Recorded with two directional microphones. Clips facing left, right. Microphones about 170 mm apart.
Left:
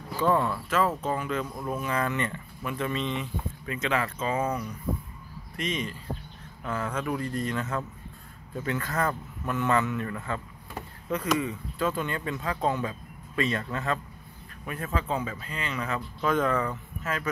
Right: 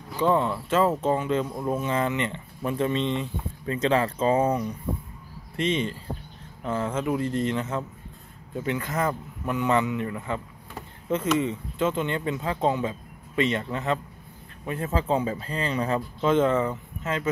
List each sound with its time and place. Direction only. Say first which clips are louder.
0.2 s speech: right 2 dB; 20° right (ahead or behind)